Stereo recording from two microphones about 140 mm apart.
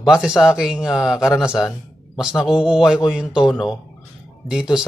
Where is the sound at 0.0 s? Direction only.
5° right (ahead or behind).